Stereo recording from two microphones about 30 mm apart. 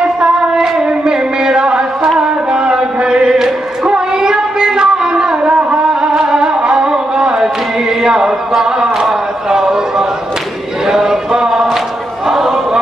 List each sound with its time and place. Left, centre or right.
0.0 s music: right
3.8 s child singing: right
5.4 s music: right
8.0 s a sound: centre